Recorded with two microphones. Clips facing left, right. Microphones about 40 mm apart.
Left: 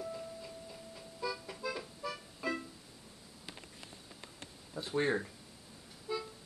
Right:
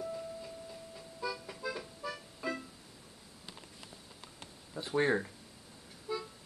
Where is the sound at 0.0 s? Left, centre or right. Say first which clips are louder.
Right 2 dB; centre.